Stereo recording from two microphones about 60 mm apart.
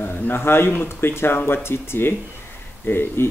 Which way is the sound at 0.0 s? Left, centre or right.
Left.